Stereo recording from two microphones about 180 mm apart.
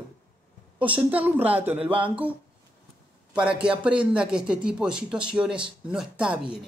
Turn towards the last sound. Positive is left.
turn(degrees=-5)  # may be behind; listen again after turning